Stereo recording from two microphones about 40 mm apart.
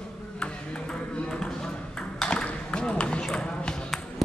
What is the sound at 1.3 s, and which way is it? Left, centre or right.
Ping, centre.